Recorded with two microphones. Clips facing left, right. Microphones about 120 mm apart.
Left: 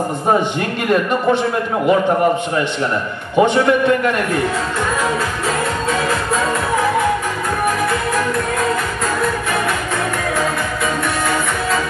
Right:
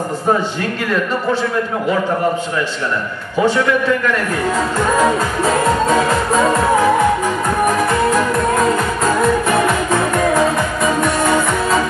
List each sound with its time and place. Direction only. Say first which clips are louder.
3.3 s a man's voice: left 2 dB; 20° left (ahead or behind)